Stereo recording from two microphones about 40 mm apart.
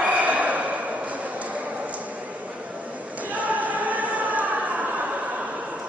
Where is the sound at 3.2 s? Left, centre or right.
Right.